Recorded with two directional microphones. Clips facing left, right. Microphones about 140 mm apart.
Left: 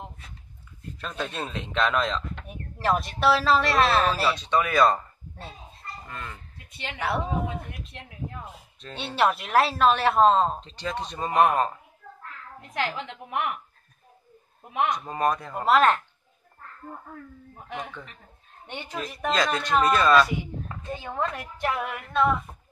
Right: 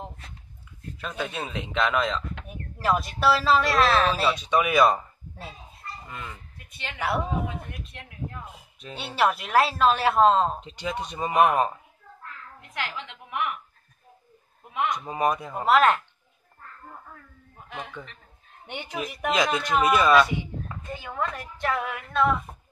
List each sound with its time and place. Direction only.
0.9 s speech: 5° right (ahead or behind)
4.3 s speech: 10° right (ahead or behind)
8.8 s speech: 5° right (ahead or behind)
10.6 s speech: 10° right (ahead or behind)
12.9 s a woman's voice: 45° left (ahead or behind)
15.0 s speech: 10° right (ahead or behind)
18.7 s speech: 15° right (ahead or behind)
20.9 s speech: 25° left (ahead or behind)
21.5 s female singing: 10° left (ahead or behind)
21.8 s speech: centre (ahead or behind)